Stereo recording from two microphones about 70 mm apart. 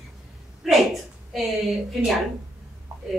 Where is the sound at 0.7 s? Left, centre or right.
Centre.